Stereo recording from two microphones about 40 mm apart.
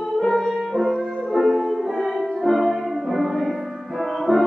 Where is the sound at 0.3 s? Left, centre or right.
Centre.